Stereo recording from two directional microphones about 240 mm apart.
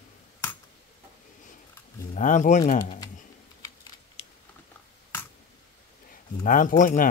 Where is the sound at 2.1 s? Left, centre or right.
Left.